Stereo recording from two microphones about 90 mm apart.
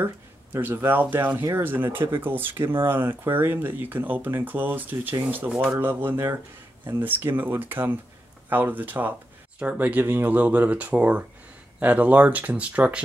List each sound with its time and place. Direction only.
0.0 s speech: 20° right (ahead or behind)